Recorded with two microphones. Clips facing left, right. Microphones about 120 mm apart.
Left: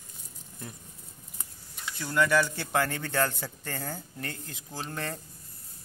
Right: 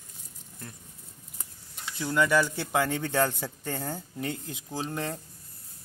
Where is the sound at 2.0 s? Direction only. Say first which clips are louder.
Right 1 dB; 15° right (ahead or behind).